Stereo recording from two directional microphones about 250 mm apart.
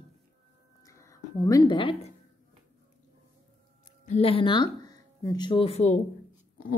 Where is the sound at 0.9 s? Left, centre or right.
Centre.